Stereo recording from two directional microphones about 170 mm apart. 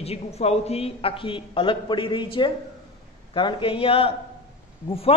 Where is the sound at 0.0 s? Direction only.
35° left (ahead or behind).